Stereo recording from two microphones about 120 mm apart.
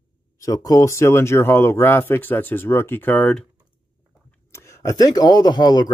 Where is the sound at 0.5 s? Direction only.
30° left (ahead or behind); by 3.4 s 10° left (ahead or behind).